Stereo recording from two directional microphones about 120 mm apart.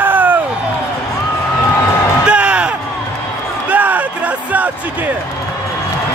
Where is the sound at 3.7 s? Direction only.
15° right (ahead or behind).